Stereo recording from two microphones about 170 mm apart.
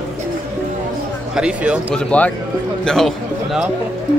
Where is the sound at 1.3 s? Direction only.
5° right (ahead or behind).